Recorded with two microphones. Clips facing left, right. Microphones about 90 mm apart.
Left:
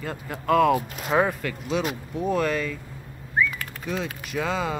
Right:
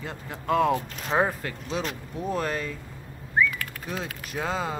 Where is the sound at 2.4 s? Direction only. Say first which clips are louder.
Left 4 dB; 35° right (ahead or behind).